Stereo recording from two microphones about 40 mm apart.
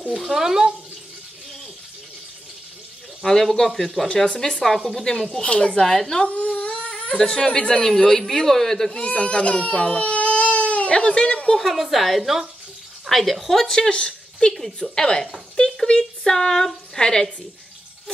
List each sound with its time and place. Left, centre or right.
0.2 s speech: centre
3.3 s a woman's voice: centre
4.3 s speech: centre
4.6 s a woman's voice: centre
5.4 s speech: left
5.8 s speech: centre
6.2 s crying: left
6.9 s speech: centre
8.9 s speech: left
11.6 s a woman's voice: centre
13.7 s a woman's voice: left